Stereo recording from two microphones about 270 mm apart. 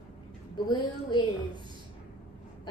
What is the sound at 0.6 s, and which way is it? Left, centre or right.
Speech, centre.